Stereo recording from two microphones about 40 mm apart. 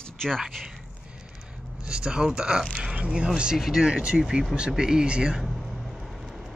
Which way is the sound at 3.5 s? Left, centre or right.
Centre.